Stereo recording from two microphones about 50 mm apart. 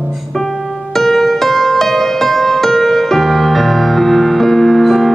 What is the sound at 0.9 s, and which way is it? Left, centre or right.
Music, centre.